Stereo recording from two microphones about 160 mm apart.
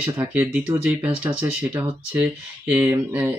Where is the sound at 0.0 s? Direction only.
10° right (ahead or behind).